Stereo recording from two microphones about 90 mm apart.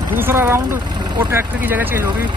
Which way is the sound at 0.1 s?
25° right (ahead or behind).